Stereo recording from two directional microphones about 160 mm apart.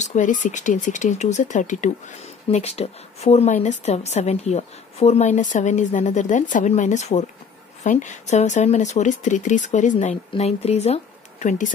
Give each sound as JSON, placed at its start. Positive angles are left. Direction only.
{"t": 0.0, "sound": "speech", "side_deg": 50}